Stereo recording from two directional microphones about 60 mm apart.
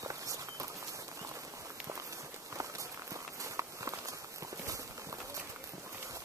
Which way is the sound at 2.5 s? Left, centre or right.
Right.